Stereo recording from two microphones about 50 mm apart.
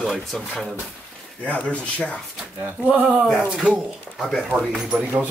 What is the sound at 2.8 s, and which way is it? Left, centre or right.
Speech, right.